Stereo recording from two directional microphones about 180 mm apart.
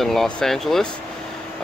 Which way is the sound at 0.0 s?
Centre (ahead or behind).